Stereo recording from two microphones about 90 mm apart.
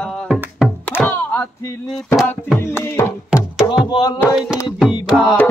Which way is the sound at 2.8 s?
30° left (ahead or behind).